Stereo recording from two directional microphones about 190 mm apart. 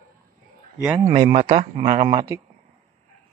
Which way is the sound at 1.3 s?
30° right (ahead or behind).